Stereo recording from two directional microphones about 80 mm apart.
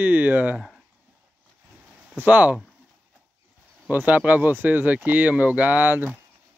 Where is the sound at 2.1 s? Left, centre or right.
Centre.